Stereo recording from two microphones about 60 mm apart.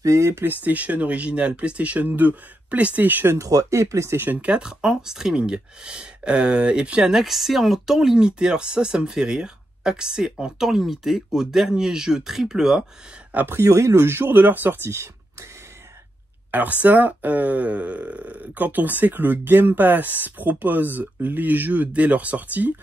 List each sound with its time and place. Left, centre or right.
0.0 s speech: right
0.5 s speech: right
3.3 s speech: right
4.2 s speech: right; by 12.8 s centre
13.3 s speech: right
13.6 s speech: right
13.9 s speech: right
16.5 s speech: right